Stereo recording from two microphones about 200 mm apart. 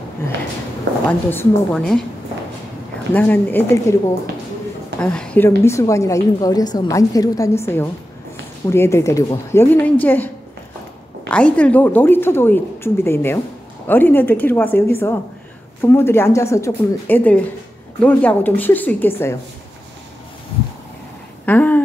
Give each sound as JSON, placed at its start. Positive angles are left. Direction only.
{"t": 1.3, "sound": "a woman's voice", "side_deg": 5}
{"t": 3.1, "sound": "a woman's voice", "side_deg": 10}
{"t": 21.5, "sound": "a woman's voice", "side_deg": 10}